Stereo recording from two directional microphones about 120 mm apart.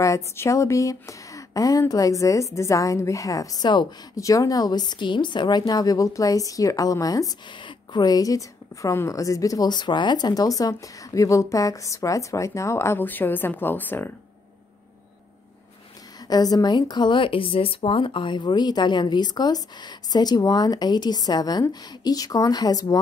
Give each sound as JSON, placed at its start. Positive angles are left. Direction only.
{"t": 0.0, "sound": "speech", "side_deg": 25}
{"t": 16.3, "sound": "speech", "side_deg": 35}